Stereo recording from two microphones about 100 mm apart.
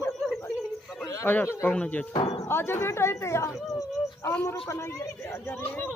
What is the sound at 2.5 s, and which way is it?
Speech, 25° left (ahead or behind).